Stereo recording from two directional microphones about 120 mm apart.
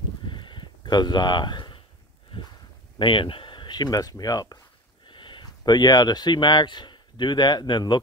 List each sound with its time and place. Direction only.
0.2 s a sound: 40° left (ahead or behind)
3.0 s speech: 45° left (ahead or behind)
5.0 s speech: 45° left (ahead or behind)